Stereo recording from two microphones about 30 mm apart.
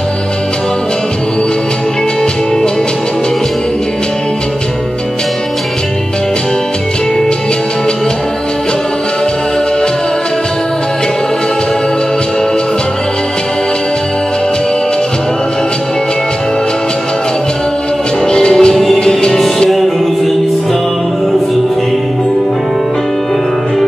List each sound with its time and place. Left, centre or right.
18.2 s music: left
18.7 s music: centre